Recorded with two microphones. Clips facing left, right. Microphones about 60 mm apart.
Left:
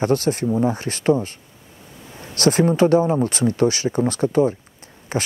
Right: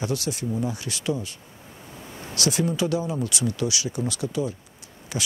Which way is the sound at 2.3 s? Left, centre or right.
Left.